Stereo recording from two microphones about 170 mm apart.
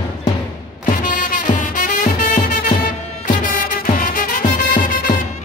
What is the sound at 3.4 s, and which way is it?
Music, 55° left (ahead or behind).